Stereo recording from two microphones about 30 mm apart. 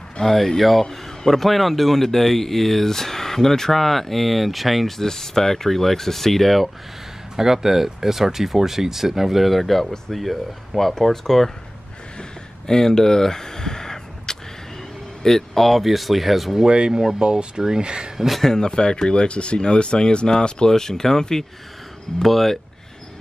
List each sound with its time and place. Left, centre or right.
0.2 s speech: centre
4.9 s speech: centre
7.3 s speech: centre
12.6 s a sound: centre
15.2 s speech: centre
15.8 s speech: centre
16.6 s speech: right
16.9 s speech: centre
17.2 s speech: right
18.6 s speech: left
22.2 s speech: centre